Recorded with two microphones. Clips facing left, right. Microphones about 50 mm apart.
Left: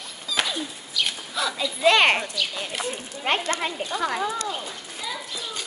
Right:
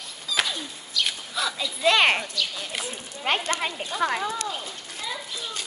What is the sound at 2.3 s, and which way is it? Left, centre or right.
Speech, centre.